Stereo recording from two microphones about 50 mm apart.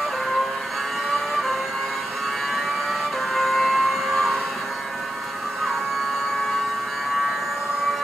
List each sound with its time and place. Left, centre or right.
2.5 s vehicle: centre